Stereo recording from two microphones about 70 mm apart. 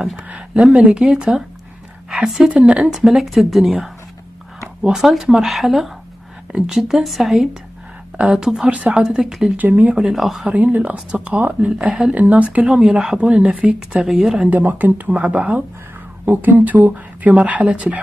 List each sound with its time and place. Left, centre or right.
0.1 s speech: centre
4.8 s speech: centre
9.1 s speech: centre
9.6 s speech: right
9.9 s speech: centre
10.5 s speech: right
12.6 s speech: centre
14.5 s speech: right